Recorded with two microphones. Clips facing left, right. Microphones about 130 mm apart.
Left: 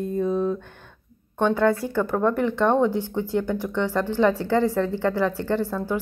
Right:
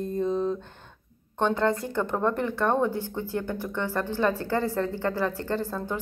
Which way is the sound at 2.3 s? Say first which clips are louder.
Left 5 dB; 20° left (ahead or behind).